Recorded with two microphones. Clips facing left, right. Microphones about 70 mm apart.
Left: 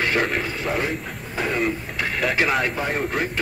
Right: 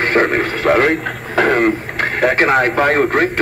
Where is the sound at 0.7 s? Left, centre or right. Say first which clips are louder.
Right 16 dB; right.